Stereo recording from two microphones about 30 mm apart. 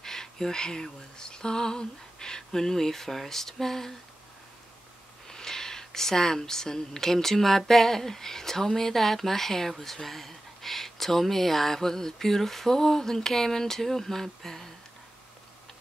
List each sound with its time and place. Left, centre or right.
0.0 s a sound: centre
1.1 s speech: left
5.3 s speech: centre